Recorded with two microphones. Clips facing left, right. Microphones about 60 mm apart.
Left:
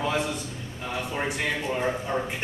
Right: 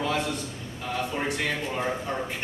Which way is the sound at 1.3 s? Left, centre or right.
Centre.